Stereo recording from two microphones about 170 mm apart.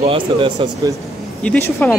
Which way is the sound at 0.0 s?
35° right (ahead or behind).